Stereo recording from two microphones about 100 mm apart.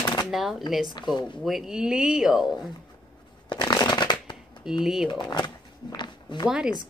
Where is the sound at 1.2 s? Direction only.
50° left (ahead or behind).